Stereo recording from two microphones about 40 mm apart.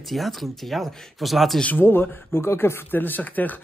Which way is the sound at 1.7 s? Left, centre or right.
Left.